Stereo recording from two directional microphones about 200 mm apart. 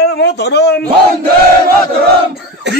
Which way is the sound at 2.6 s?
60° right (ahead or behind).